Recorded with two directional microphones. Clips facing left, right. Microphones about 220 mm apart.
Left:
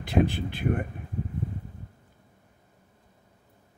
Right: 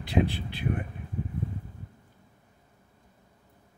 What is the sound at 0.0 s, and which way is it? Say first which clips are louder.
Speech: left 2 dB; 50° left (ahead or behind).